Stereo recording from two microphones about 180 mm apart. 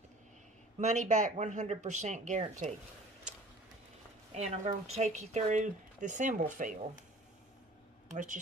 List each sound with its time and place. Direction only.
0.7 s speech: 40° right (ahead or behind)
4.4 s speech: 35° right (ahead or behind)
8.1 s speech: 45° right (ahead or behind)